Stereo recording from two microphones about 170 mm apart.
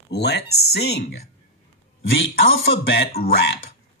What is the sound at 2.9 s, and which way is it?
Speech, 70° left (ahead or behind).